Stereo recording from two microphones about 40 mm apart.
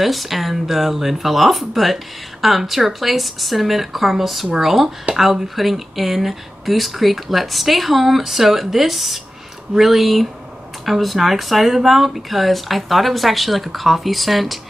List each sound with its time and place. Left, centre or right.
0.0 s speech: centre